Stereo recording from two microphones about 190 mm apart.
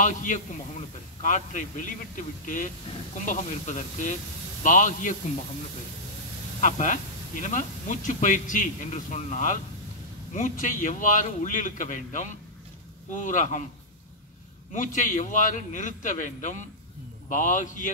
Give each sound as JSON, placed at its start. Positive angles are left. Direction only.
{"t": 0.0, "sound": "speech", "side_deg": 40}
{"t": 6.6, "sound": "speech", "side_deg": 40}
{"t": 10.6, "sound": "speech", "side_deg": 45}
{"t": 14.7, "sound": "speech", "side_deg": 45}